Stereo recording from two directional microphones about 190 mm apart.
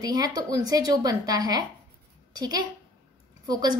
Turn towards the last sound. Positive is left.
turn(degrees=-20)  # may be behind; listen again after turning